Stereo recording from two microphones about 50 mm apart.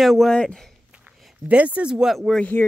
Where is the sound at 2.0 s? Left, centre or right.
Centre.